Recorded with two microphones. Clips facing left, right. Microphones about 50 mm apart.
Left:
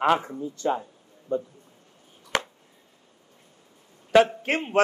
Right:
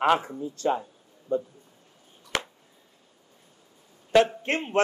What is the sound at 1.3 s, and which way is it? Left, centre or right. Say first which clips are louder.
Speech: even; left.